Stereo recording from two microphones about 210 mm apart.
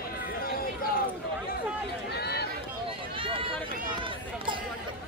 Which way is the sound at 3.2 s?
25° right (ahead or behind).